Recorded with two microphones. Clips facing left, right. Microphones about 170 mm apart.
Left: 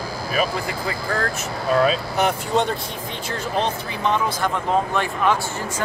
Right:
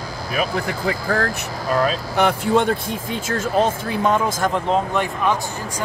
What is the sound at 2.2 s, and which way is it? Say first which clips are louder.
Speech: right 6 dB; 55° right (ahead or behind).